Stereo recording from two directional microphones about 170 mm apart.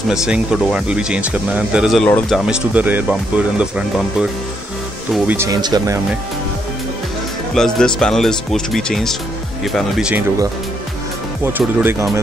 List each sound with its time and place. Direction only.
0.1 s speech: 5° right (ahead or behind)
2.0 s speech: 10° left (ahead or behind)
2.3 s speech: 5° right (ahead or behind)
5.5 s speech: 20° right (ahead or behind)
7.5 s speech: 5° left (ahead or behind)
11.4 s speech: 15° right (ahead or behind)